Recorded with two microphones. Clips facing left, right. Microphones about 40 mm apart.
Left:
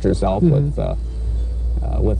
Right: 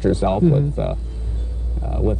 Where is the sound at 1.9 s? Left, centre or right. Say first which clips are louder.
Even; right.